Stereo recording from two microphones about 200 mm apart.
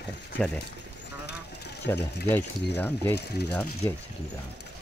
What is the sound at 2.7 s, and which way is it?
Speech, 10° left (ahead or behind).